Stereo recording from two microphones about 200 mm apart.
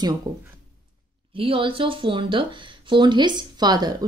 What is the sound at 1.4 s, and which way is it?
Speech, 25° right (ahead or behind).